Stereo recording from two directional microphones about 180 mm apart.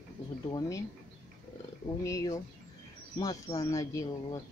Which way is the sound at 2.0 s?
20° left (ahead or behind).